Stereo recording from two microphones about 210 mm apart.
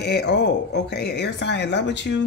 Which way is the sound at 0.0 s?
50° left (ahead or behind).